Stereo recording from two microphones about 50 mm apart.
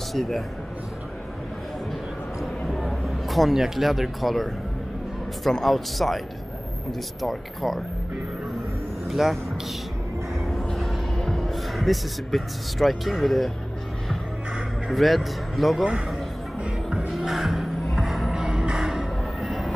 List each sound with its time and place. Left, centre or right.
0.1 s a man's voice: centre
2.8 s speech: centre
5.5 s speech: centre
9.1 s speech: centre
10.5 s a sound: centre
14.9 s speech: centre
16.6 s music: centre
17.3 s music: centre